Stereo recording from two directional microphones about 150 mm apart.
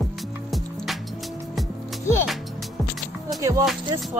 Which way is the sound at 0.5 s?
Centre (ahead or behind).